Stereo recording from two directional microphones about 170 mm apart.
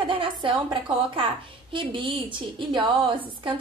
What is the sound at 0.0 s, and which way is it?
A woman's voice, 30° right (ahead or behind).